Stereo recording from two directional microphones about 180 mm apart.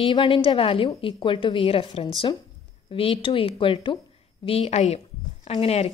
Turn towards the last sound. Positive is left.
turn(degrees=35)  # may be behind; listen again after turning